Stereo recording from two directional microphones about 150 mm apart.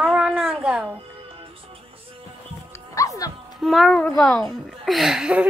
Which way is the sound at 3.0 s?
20° left (ahead or behind).